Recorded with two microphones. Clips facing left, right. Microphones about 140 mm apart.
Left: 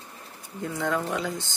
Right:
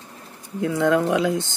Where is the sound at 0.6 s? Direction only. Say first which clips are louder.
Right 9 dB; 65° right (ahead or behind).